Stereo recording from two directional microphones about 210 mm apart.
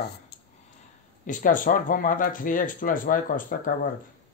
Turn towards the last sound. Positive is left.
turn(degrees=40)  # may be behind; listen again after turning